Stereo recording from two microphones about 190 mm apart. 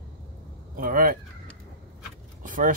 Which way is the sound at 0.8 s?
50° right (ahead or behind).